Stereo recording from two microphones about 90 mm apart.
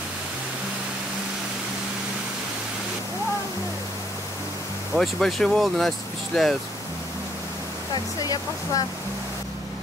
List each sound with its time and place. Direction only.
4.9 s speech: centre (ahead or behind)
7.9 s speech: 45° left (ahead or behind)